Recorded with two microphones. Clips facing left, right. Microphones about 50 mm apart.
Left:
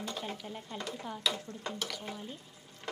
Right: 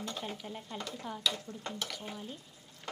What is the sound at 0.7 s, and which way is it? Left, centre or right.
Speech, centre.